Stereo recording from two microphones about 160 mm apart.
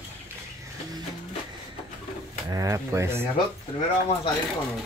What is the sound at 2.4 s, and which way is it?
Speech, 20° right (ahead or behind).